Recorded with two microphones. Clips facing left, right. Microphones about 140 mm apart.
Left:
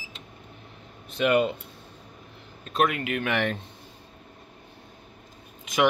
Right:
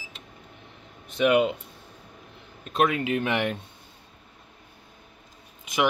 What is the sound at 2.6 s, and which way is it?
Speech, 20° right (ahead or behind).